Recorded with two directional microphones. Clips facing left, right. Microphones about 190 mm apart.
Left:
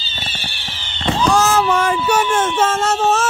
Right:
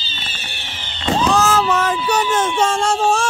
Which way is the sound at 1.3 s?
10° left (ahead or behind).